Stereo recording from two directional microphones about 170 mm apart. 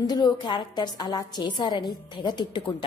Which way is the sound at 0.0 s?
25° left (ahead or behind).